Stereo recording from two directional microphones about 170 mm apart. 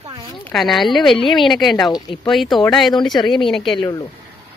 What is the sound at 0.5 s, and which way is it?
Speech, centre (ahead or behind).